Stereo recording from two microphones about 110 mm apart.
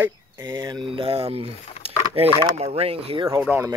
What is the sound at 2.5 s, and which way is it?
Speech, 65° right (ahead or behind).